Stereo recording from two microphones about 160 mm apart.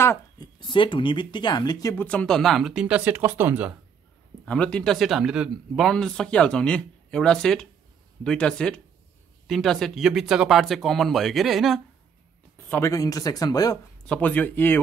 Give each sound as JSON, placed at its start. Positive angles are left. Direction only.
{"t": 0.0, "sound": "speech", "side_deg": 15}
{"t": 0.6, "sound": "speech", "side_deg": 30}
{"t": 2.0, "sound": "speech", "side_deg": 5}
{"t": 4.5, "sound": "speech", "side_deg": 5}
{"t": 12.6, "sound": "speech", "side_deg": 15}
{"t": 14.0, "sound": "speech", "side_deg": 10}